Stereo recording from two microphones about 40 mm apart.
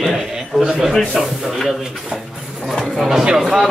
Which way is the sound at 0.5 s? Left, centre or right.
Centre.